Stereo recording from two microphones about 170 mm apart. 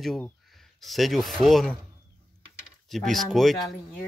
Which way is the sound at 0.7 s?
Centre (ahead or behind).